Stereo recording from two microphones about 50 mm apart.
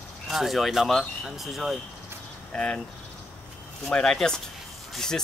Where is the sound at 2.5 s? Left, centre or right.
Centre.